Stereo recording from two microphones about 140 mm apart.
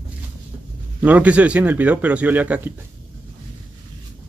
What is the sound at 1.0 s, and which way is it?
A man's voice, 10° right (ahead or behind).